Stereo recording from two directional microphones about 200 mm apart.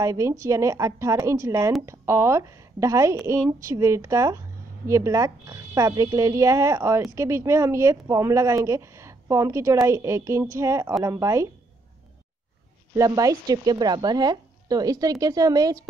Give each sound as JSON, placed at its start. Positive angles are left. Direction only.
{"t": 0.0, "sound": "speech", "side_deg": -15}
{"t": 12.9, "sound": "a woman's voice", "side_deg": -15}